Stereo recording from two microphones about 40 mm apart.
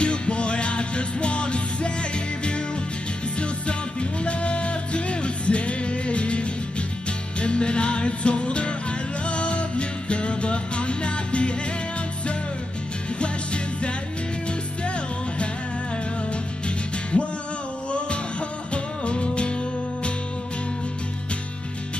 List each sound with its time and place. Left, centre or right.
0.0 s music: left
13.2 s music: left
16.3 s music: left
18.7 s music: left